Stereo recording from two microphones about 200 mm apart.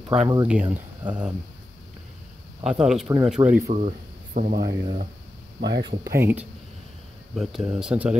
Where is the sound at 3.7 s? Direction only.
40° right (ahead or behind).